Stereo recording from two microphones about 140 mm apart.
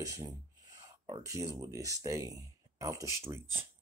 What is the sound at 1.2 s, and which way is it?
Speech, 20° right (ahead or behind).